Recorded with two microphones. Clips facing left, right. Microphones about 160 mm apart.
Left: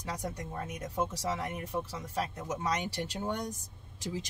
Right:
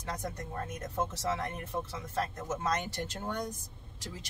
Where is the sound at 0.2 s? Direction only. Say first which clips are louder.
Even; 10° left (ahead or behind).